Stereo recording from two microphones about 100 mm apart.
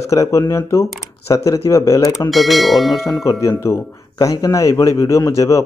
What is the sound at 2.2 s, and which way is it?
Speech, centre (ahead or behind).